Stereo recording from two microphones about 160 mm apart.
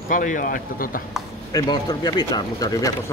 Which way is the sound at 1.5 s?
25° left (ahead or behind).